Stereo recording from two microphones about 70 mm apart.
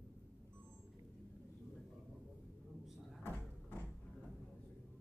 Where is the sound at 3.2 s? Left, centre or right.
Left.